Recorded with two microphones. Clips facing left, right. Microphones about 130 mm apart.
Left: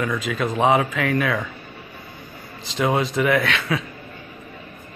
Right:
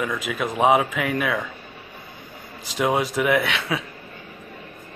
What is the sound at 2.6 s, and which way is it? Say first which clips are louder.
Speech: left 1 dB; 10° right (ahead or behind).